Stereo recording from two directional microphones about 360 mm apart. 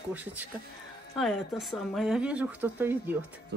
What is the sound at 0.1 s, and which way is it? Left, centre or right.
A woman's voice, centre.